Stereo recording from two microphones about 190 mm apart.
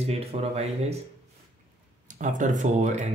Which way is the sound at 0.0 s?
30° right (ahead or behind).